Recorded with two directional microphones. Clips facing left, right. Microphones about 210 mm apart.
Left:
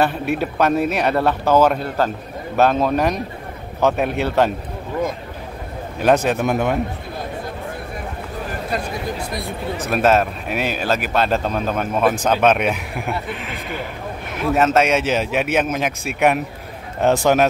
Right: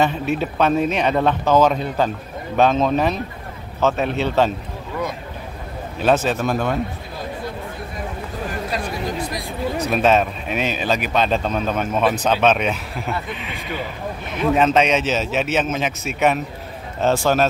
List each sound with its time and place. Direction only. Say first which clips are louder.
0.0 s a man's voice: even; 10° left (ahead or behind)
5.9 s a man's voice: left 2 dB; 10° left (ahead or behind)
9.8 s a man's voice: left 1 dB; 5° left (ahead or behind)